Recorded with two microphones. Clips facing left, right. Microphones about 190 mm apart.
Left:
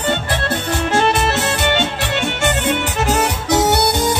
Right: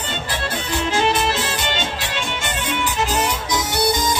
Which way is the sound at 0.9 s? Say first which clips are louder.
Left 3 dB; 65° left (ahead or behind).